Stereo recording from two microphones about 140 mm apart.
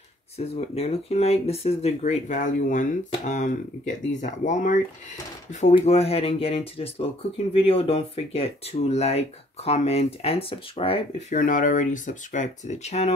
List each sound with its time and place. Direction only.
0.4 s speech: 45° left (ahead or behind)
5.8 s speech: 45° left (ahead or behind)
11.3 s speech: 75° left (ahead or behind); by 13.1 s 55° left (ahead or behind)